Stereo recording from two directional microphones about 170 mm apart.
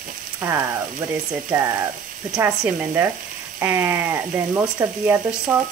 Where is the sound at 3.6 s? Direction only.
15° right (ahead or behind).